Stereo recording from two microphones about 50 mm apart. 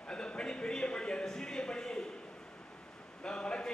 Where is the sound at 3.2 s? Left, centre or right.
Centre.